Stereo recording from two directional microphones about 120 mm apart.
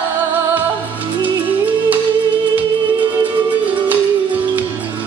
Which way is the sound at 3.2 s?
15° right (ahead or behind).